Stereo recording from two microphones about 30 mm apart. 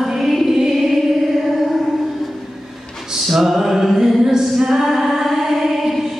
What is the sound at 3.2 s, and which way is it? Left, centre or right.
Music, centre.